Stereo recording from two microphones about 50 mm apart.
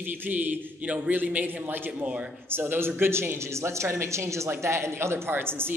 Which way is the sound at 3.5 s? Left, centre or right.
Right.